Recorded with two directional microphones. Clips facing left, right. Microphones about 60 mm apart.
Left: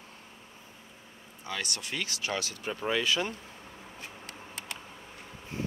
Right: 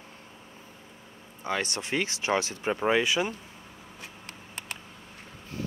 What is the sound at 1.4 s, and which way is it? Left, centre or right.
Speech, right.